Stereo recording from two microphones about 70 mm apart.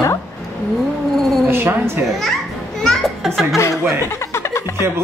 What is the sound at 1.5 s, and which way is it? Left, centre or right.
Speech, right.